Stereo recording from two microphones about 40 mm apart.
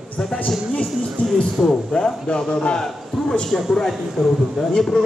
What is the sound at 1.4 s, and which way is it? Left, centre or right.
A man's voice, centre.